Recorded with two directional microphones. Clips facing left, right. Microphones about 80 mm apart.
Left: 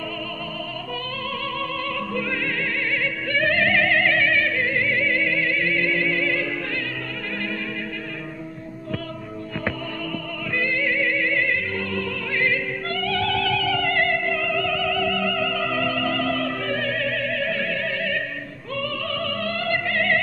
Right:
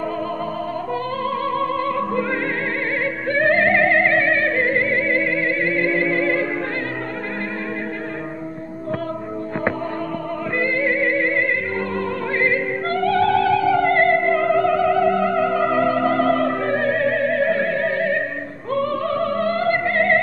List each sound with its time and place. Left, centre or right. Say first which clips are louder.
1.6 s opera: right 7 dB; right
3.3 s music: right 5 dB; right
10.6 s music: right 4 dB; right
18.8 s opera: right 7 dB; right